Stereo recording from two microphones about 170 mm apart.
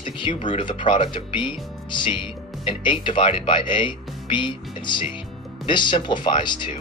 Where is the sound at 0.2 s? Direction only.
30° left (ahead or behind).